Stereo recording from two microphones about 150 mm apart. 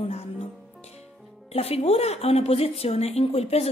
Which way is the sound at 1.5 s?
40° left (ahead or behind).